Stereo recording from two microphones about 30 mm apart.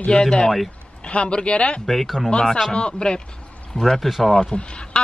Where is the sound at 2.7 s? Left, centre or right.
Left.